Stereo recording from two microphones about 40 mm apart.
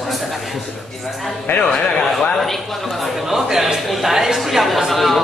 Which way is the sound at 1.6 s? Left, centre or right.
Left.